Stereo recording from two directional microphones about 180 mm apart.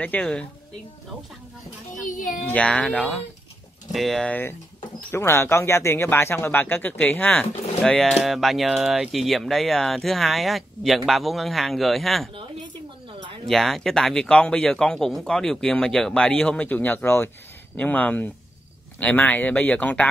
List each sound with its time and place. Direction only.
0.0 s speech: 10° left (ahead or behind)
2.0 s a woman's voice: 45° left (ahead or behind)
2.5 s speech: 5° left (ahead or behind)
13.5 s speech: centre (ahead or behind)